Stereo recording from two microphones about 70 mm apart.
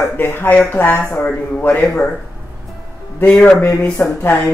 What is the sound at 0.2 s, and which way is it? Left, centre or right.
Speech, left.